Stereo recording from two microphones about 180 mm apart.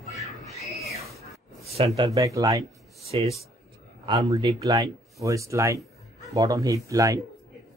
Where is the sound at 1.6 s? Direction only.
35° right (ahead or behind).